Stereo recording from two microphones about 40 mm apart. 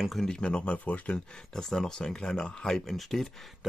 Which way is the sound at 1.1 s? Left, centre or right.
Centre.